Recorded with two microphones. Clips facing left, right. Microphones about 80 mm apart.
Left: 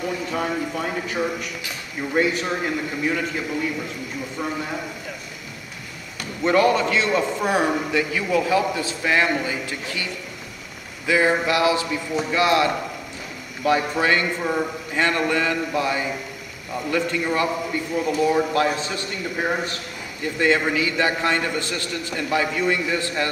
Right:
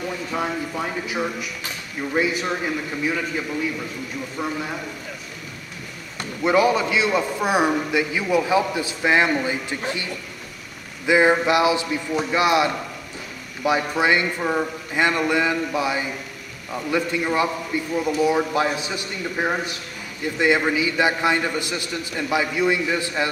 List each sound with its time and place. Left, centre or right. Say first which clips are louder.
0.3 s a man's voice: right 1 dB; centre
4.4 s a man's voice: right 1 dB; centre
6.4 s a man's voice: even; centre
11.1 s a man's voice: right 2 dB; right